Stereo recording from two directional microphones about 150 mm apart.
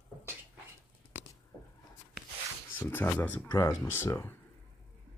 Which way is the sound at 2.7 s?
10° left (ahead or behind).